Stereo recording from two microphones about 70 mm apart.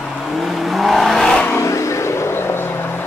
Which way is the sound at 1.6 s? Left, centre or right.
Left.